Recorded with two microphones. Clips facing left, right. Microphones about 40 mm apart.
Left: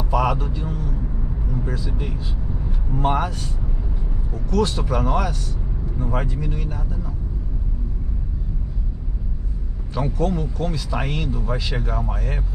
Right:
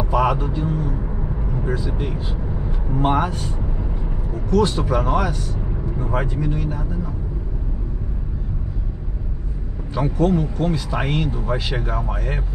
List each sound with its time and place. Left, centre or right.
0.1 s vehicle: centre
1.1 s vehicle: right
1.9 s speech: centre
2.1 s speech: right
4.5 s speech: centre
9.9 s speech: centre